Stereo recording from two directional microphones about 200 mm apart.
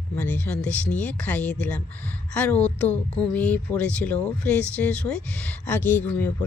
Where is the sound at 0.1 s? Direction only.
10° left (ahead or behind).